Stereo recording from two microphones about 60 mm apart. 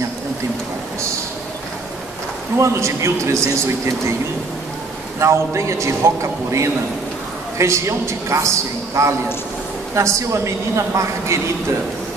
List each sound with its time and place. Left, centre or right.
2.5 s a man's voice: right
5.2 s a man's voice: right